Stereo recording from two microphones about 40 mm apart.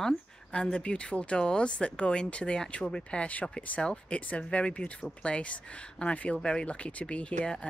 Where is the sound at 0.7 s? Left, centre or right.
Left.